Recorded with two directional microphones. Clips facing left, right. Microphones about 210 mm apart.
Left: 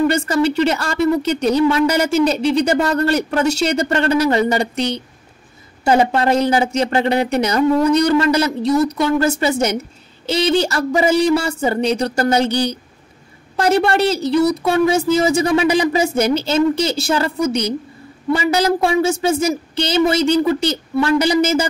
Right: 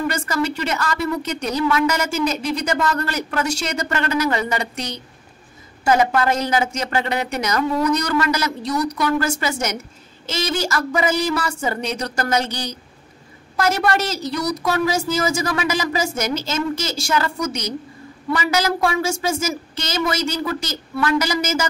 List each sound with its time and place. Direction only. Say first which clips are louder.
0.1 s speech: left 6 dB; 30° left (ahead or behind)
13.6 s speech: left 5 dB; 30° left (ahead or behind)